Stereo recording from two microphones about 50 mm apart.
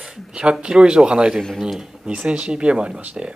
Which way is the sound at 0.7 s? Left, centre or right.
Centre.